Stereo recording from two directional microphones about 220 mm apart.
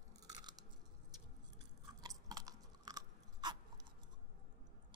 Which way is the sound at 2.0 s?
15° right (ahead or behind).